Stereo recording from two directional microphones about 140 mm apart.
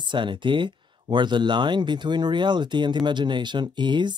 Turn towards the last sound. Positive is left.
turn(degrees=-35)  # may be behind; listen again after turning